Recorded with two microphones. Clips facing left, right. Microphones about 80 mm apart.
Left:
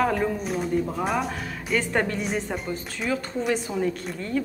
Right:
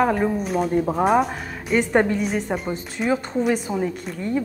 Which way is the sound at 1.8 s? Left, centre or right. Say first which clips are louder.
Right 7 dB; centre.